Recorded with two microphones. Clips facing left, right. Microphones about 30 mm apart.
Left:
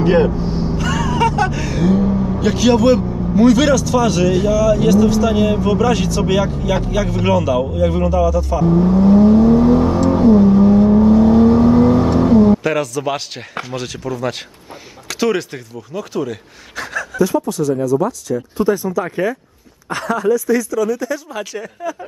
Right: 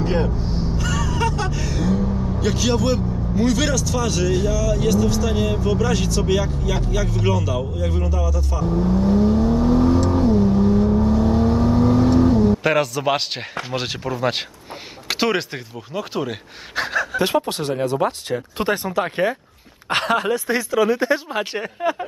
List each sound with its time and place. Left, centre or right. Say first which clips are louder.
0.0 s speech: left 8 dB; centre
0.4 s vehicle: left 5 dB; centre
8.1 s music: left 10 dB; centre
9.0 s vehicle: left 8 dB; left
10.6 s vehicle: left 7 dB; left
12.6 s speech: even; centre
17.2 s speech: left 8 dB; right